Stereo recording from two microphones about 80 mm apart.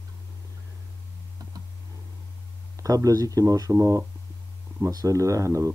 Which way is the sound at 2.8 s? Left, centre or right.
Right.